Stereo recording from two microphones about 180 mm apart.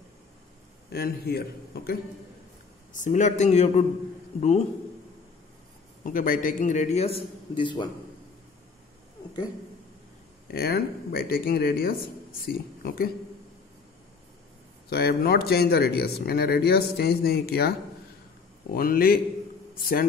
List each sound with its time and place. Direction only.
0.9 s speech: 60° left (ahead or behind)
2.9 s a man's voice: 45° left (ahead or behind)
6.0 s a man's voice: 50° left (ahead or behind)
7.5 s a man's voice: 25° left (ahead or behind)
10.5 s speech: 60° left (ahead or behind)
14.9 s a man's voice: 60° left (ahead or behind)